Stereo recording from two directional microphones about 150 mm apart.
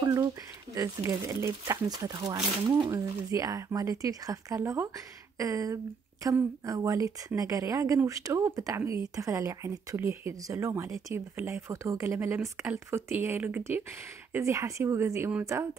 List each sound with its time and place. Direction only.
0.0 s a woman's voice: 25° right (ahead or behind)